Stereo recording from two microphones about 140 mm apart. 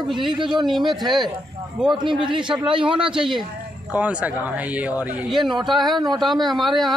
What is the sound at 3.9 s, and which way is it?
Speech, 10° right (ahead or behind).